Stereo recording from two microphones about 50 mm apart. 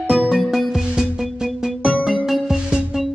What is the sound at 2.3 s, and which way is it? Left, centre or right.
Music, centre.